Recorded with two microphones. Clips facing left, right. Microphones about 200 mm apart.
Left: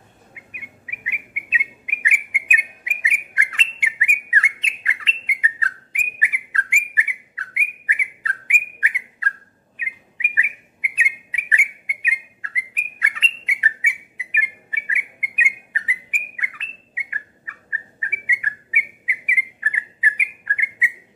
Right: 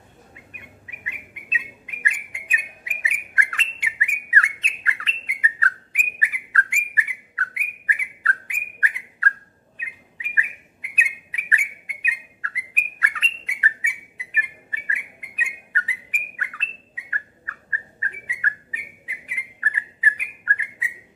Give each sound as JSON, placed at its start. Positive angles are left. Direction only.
{"t": 0.3, "sound": "bird", "side_deg": 10}
{"t": 10.3, "sound": "bird", "side_deg": 15}